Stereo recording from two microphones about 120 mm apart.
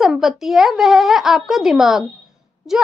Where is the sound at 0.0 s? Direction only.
5° right (ahead or behind).